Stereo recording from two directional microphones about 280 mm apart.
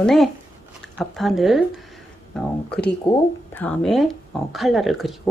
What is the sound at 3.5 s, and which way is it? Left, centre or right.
Speech, centre.